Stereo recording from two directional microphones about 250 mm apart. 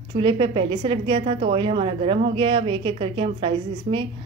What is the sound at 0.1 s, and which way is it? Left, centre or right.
A woman's voice, right.